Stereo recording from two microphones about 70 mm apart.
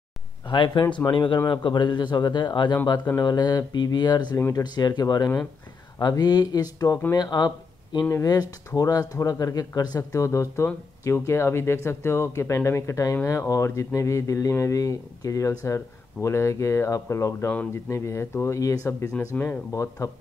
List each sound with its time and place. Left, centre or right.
0.5 s a man's voice: left
4.4 s speech: left
4.6 s speech: left
7.2 s speech: left
8.1 s speech: left